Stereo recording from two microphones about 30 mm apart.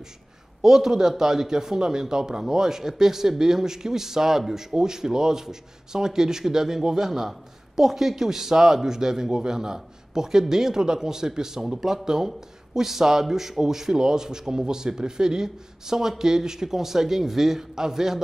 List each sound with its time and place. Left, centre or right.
0.6 s a man's voice: centre